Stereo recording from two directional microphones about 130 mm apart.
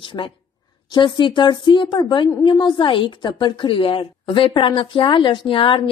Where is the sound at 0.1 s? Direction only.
30° left (ahead or behind).